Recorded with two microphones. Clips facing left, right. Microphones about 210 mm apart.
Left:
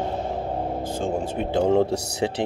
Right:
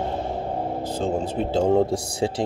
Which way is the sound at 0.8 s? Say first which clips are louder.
Right 1 dB; 45° left (ahead or behind).